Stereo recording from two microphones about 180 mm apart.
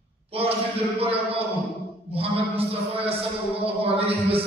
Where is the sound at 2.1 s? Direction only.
30° right (ahead or behind).